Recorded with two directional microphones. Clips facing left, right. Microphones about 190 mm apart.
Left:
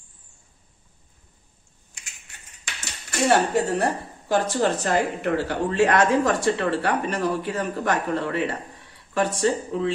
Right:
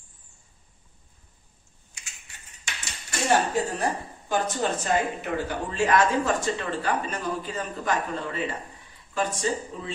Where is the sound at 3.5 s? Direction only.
70° left (ahead or behind).